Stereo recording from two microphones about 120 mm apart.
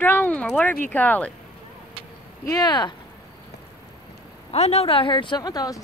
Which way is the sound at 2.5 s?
35° left (ahead or behind).